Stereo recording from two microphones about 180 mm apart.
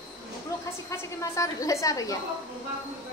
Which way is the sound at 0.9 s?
15° left (ahead or behind).